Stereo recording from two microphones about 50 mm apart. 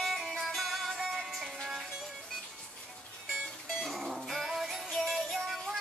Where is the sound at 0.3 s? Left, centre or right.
Centre.